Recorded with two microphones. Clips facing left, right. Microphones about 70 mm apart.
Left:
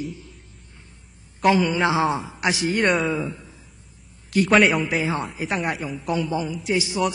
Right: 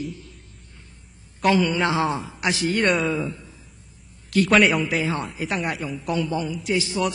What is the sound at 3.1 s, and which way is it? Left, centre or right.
A man's voice, centre.